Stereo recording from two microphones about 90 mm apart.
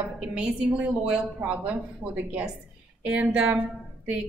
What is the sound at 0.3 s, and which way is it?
A woman's voice, 10° right (ahead or behind).